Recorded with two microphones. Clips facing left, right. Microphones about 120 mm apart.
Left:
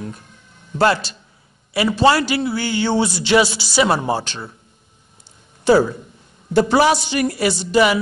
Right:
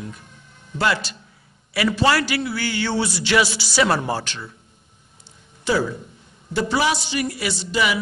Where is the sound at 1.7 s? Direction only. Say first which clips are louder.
Left 4 dB; 25° left (ahead or behind).